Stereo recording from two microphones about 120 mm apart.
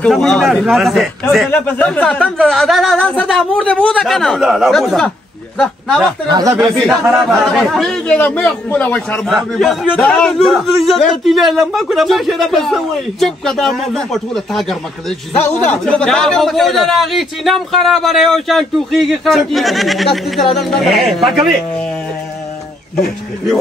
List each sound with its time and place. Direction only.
0.0 s speech: 5° left (ahead or behind)
1.5 s speech: 15° left (ahead or behind)
6.2 s speech: 35° right (ahead or behind)
6.6 s speech: centre (ahead or behind)